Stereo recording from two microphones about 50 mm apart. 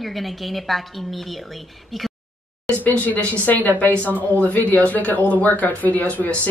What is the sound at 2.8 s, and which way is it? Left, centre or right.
Speech, left.